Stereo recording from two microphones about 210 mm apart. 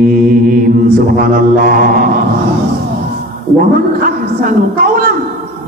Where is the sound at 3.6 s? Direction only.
40° right (ahead or behind).